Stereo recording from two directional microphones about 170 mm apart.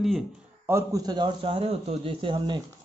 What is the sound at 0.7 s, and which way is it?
A man's voice, 20° right (ahead or behind).